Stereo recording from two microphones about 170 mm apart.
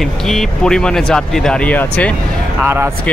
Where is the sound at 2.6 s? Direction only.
15° right (ahead or behind).